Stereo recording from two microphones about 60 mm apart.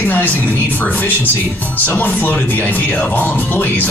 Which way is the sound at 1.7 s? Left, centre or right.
Left.